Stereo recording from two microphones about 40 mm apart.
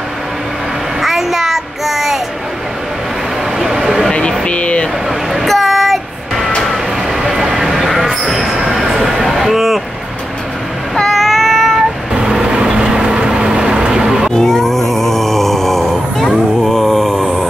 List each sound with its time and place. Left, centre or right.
1.0 s child singing: centre
3.5 s a sound: centre
4.5 s a sound: left
5.3 s train: centre
6.6 s vehicle: centre
8.3 s a sound: centre
9.3 s vehicle: centre
11.0 s child singing: centre
12.1 s vehicle: centre
14.3 s groan: centre